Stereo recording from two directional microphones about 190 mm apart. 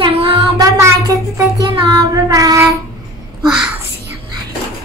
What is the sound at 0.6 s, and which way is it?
Child singing, 15° right (ahead or behind).